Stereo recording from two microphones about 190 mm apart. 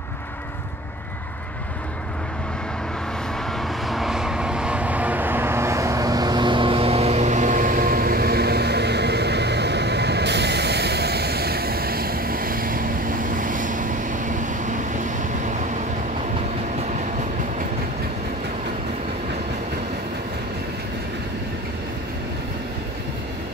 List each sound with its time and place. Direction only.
3.5 s vehicle: centre (ahead or behind); by 15.7 s 40° right (ahead or behind)